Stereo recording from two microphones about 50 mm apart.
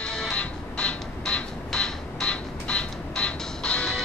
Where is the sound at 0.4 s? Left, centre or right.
Left.